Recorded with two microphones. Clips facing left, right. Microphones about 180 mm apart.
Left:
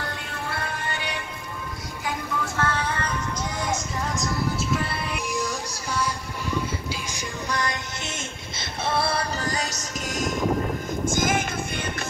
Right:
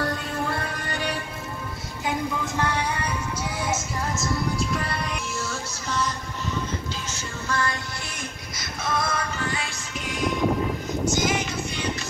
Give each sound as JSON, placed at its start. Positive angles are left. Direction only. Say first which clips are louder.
{"t": 0.0, "sound": "music", "louder": "right 6 dB", "side_deg": -40}
{"t": 2.0, "sound": "music", "louder": "right 2 dB", "side_deg": -20}
{"t": 5.3, "sound": "music", "louder": "left 3 dB", "side_deg": 15}